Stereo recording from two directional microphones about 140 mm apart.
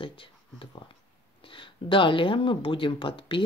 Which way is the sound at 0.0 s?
40° left (ahead or behind).